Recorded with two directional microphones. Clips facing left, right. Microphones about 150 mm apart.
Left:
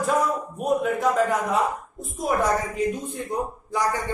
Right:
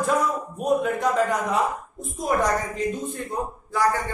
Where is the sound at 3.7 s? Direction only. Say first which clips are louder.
Right 3 dB; 20° left (ahead or behind).